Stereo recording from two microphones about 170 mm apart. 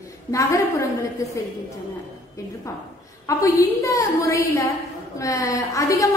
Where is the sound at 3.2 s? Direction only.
20° left (ahead or behind).